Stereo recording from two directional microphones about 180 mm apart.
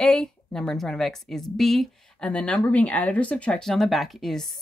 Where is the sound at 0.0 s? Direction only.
5° left (ahead or behind).